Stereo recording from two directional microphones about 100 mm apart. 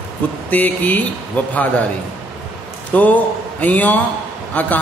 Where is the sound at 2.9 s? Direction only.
15° left (ahead or behind).